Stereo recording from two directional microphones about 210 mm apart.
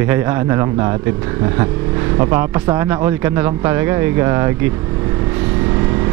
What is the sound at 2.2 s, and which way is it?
Speech, 15° right (ahead or behind).